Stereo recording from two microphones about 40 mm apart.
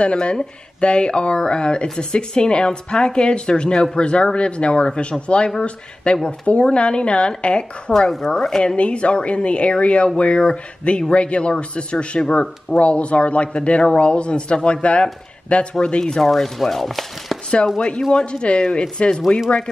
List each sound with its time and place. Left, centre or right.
0.0 s speech: left
7.9 s speech: centre
8.7 s speech: left
16.3 s chopping: centre
17.7 s speech: left